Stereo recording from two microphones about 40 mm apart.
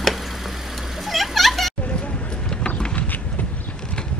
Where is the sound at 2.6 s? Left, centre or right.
Left.